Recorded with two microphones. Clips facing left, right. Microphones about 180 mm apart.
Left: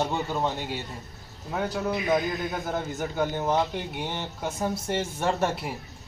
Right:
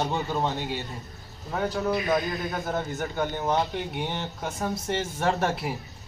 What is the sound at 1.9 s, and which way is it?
Speech, 20° left (ahead or behind).